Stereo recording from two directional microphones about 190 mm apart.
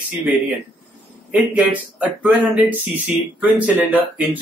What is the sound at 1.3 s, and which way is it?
Speech, 10° right (ahead or behind).